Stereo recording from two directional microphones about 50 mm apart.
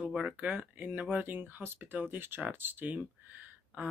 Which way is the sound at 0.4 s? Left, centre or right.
Right.